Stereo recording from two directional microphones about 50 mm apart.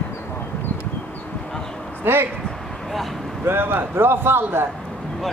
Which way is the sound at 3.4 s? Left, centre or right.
Right.